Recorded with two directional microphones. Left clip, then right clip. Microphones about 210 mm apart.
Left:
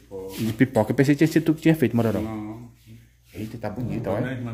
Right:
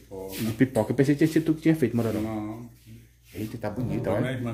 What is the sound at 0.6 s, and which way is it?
Speech, 20° left (ahead or behind).